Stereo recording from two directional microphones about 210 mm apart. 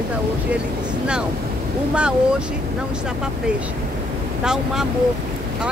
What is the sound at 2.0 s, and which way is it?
Speech, 5° right (ahead or behind).